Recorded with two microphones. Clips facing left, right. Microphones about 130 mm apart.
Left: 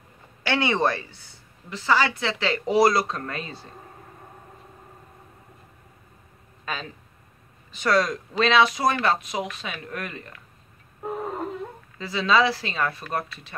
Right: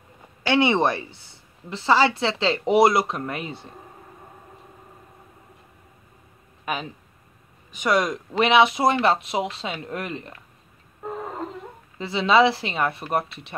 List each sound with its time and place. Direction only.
0.5 s a woman's voice: 20° right (ahead or behind)
6.6 s a woman's voice: 20° right (ahead or behind)
11.0 s a sound: 10° left (ahead or behind)
12.0 s a woman's voice: 25° right (ahead or behind)